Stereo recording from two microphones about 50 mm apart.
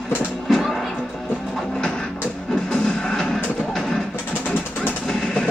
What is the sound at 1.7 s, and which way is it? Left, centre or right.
Music, centre.